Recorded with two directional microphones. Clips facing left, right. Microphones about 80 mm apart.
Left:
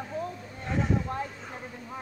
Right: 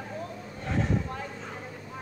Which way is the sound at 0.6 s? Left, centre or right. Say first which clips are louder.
Even; centre.